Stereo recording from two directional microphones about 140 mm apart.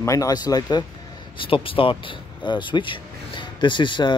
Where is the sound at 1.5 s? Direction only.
40° left (ahead or behind).